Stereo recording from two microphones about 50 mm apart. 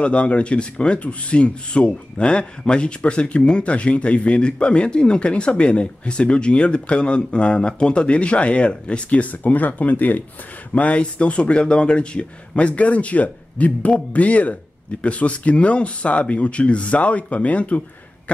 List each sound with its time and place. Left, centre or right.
0.0 s speech: left